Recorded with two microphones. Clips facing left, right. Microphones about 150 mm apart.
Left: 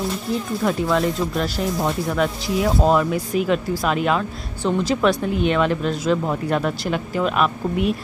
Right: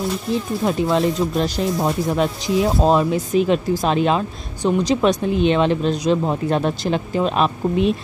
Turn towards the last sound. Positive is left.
turn(degrees=-25)  # may be behind; listen again after turning